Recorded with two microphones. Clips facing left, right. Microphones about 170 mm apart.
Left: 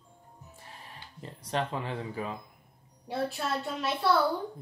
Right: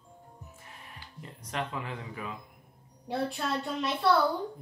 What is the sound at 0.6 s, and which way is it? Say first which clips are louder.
Music: left 5 dB; 30° left (ahead or behind).